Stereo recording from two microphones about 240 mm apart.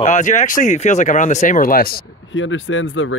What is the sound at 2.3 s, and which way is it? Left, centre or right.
Speech, left.